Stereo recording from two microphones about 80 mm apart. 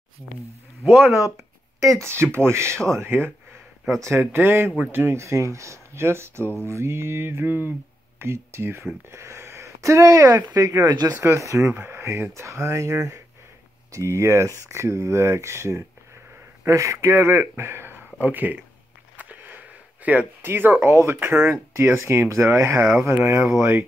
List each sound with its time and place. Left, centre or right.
0.8 s speech: centre
1.2 s a sound: right
2.0 s speech: right
11.1 s speech: right
11.7 s speech: right
19.1 s a sound: right
20.8 s speech: right